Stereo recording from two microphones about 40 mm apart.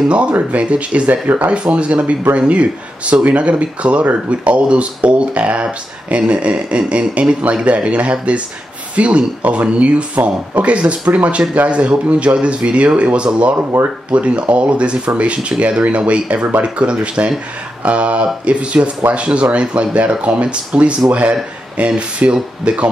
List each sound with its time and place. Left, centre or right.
0.1 s speech: right
1.5 s speech: right